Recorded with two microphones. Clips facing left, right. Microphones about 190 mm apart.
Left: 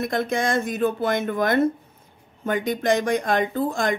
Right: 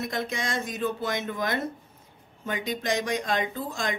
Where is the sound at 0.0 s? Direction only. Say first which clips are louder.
Left 7 dB; 50° left (ahead or behind).